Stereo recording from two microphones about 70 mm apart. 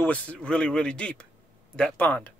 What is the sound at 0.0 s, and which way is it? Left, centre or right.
Speech, left.